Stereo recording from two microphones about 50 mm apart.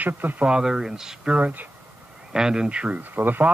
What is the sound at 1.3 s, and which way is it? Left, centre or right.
Speech, right.